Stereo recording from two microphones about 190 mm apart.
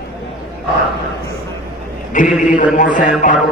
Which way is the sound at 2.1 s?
45° left (ahead or behind).